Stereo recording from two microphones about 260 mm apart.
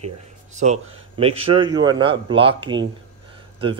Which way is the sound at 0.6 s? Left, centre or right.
Right.